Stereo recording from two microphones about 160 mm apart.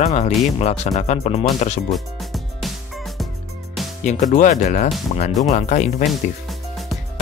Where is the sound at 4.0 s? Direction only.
50° left (ahead or behind).